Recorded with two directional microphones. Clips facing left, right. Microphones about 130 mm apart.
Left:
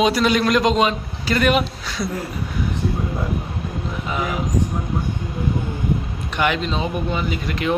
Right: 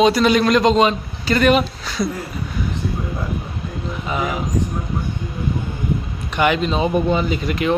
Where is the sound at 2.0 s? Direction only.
20° right (ahead or behind).